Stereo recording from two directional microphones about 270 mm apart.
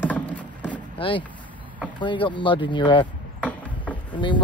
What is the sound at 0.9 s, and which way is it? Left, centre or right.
Vehicle, centre.